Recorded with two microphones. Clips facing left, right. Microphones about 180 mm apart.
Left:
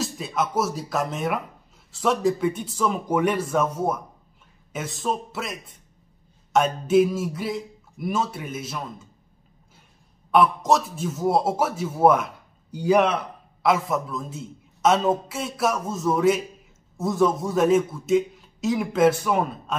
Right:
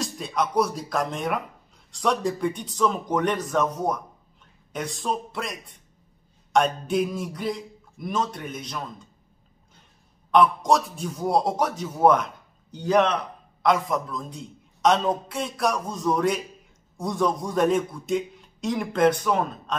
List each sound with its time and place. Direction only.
0.0 s a man's voice: 5° left (ahead or behind)
10.3 s a man's voice: 5° left (ahead or behind)